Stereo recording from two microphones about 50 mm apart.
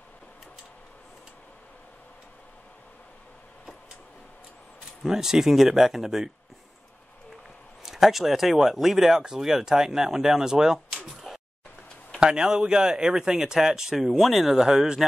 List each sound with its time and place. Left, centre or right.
5.0 s speech: centre
7.8 s speech: centre
11.3 s a sound: centre
12.2 s speech: centre